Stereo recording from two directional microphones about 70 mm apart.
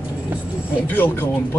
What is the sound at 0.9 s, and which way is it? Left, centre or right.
Speech, left.